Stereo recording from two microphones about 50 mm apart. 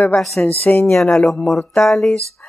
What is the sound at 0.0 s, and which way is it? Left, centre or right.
Speech, centre.